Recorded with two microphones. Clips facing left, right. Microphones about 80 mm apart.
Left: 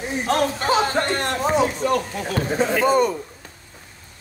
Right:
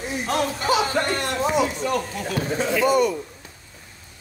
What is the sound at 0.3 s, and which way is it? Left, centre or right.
Speech, left.